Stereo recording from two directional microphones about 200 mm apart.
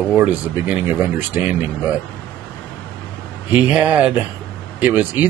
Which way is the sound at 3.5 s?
5° right (ahead or behind).